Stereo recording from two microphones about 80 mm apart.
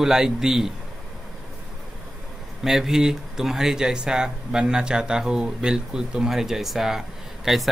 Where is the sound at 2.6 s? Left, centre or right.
Centre.